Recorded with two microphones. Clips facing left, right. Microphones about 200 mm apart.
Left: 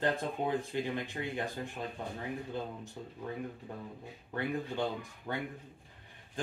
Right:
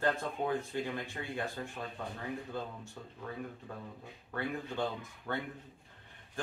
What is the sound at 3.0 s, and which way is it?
Speech, 20° left (ahead or behind).